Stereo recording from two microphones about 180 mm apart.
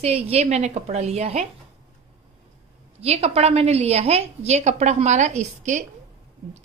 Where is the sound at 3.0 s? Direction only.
35° right (ahead or behind).